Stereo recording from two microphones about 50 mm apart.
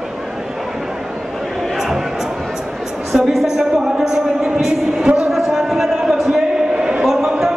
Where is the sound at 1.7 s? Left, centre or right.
Centre.